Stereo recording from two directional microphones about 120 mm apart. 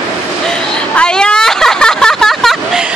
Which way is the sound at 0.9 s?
5° left (ahead or behind).